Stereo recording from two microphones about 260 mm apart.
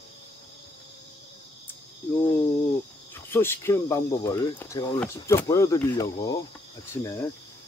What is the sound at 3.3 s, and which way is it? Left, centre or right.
Speech, centre.